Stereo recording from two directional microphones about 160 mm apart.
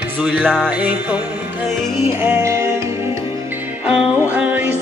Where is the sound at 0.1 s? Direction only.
5° right (ahead or behind).